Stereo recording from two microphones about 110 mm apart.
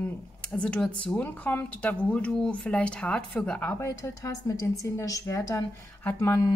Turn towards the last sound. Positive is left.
turn(degrees=25)  # may be behind; listen again after turning